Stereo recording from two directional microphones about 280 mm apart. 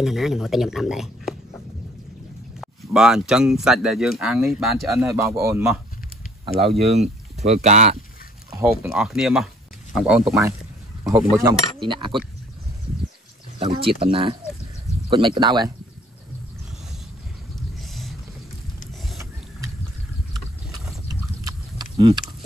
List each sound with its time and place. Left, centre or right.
0.0 s speech: centre
2.6 s speech: centre
6.4 s speech: centre
8.5 s speech: centre
11.8 s speech: centre
13.6 s speech: centre
17.7 s vehicle: centre
21.1 s a sound: centre